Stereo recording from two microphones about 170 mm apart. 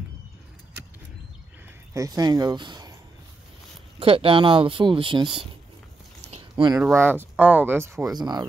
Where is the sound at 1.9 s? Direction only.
20° right (ahead or behind).